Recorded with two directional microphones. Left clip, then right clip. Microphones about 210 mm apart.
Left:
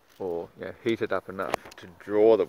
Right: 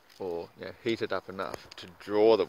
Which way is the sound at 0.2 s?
5° left (ahead or behind).